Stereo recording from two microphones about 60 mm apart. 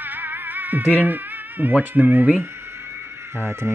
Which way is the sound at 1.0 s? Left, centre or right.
Right.